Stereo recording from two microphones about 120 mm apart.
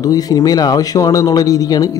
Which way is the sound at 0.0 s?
30° left (ahead or behind).